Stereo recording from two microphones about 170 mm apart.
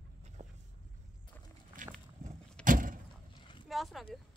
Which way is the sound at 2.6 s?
50° right (ahead or behind).